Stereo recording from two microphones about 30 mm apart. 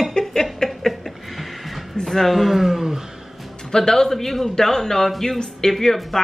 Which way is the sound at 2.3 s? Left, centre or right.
Centre.